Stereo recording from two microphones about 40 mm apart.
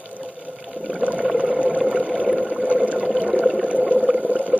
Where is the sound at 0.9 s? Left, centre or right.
Right.